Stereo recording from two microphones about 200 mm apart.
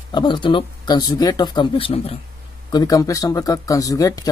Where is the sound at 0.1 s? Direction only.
25° left (ahead or behind).